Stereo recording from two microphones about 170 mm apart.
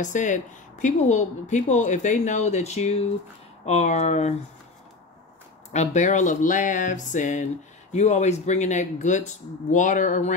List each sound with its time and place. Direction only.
0.0 s speech: 45° left (ahead or behind)
5.7 s speech: 45° left (ahead or behind)